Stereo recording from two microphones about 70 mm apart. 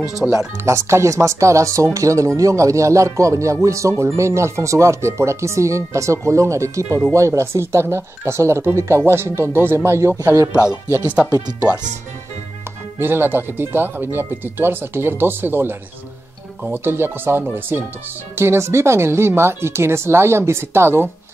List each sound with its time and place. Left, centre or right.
0.2 s speech: right
0.7 s a woman's voice: right
10.5 s speech: left
13.0 s a woman's voice: right